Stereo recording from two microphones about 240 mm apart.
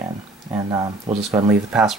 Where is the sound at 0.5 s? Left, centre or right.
Centre.